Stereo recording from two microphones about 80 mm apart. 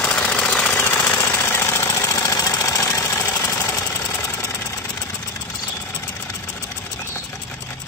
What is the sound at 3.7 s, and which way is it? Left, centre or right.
Engine knocking, left.